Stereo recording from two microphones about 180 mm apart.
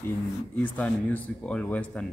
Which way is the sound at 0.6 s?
10° left (ahead or behind).